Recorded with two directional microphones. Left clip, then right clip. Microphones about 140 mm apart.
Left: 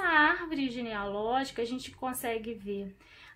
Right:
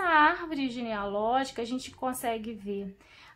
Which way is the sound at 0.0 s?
35° right (ahead or behind).